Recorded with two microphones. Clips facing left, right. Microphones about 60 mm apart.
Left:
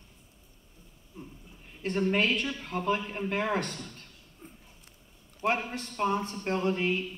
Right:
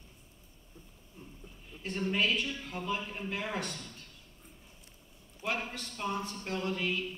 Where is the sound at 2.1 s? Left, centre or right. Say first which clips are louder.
Left 3 dB; left.